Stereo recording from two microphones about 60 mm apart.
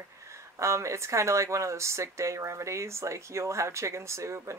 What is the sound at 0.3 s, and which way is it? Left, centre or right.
Speech, right.